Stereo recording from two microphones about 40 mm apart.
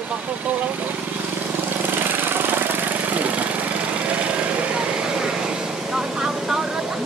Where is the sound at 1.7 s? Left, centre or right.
Right.